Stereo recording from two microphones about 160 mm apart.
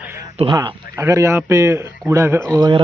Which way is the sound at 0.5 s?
20° right (ahead or behind).